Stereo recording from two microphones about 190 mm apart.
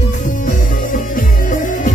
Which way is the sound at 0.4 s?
45° left (ahead or behind).